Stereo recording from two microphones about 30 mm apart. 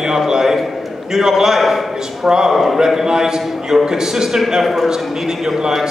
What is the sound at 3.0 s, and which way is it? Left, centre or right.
A man's voice, centre.